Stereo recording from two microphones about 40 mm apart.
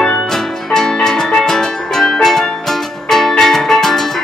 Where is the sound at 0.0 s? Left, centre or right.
Centre.